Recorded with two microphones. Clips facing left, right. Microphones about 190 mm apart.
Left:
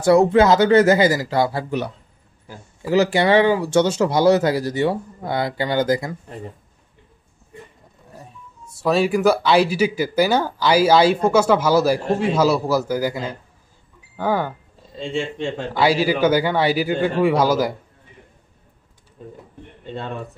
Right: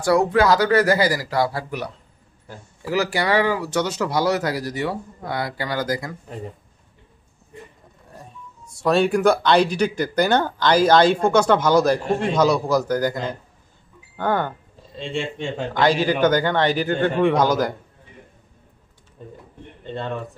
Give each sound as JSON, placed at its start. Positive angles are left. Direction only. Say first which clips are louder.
{"t": 0.0, "sound": "speech", "louder": "left 4 dB", "side_deg": 25}
{"t": 8.8, "sound": "speech", "louder": "even", "side_deg": 5}